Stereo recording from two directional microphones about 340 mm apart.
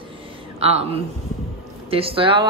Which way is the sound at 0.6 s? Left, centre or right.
Centre.